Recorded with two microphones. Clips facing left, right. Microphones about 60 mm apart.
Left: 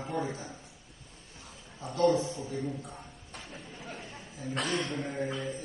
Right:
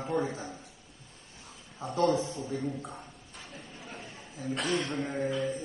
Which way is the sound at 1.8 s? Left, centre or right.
Right.